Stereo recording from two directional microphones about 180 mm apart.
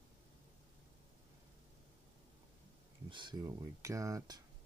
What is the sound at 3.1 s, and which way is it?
Speech, 25° right (ahead or behind).